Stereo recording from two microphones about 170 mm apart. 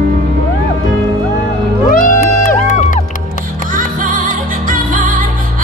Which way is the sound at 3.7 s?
50° right (ahead or behind).